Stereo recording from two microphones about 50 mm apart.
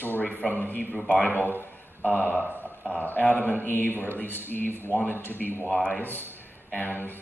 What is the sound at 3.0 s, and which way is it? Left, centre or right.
Speech, left.